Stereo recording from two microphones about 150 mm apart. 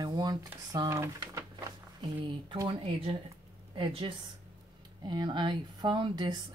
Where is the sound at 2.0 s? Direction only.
35° right (ahead or behind).